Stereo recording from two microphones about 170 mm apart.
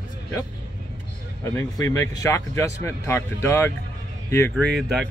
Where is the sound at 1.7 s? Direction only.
20° left (ahead or behind).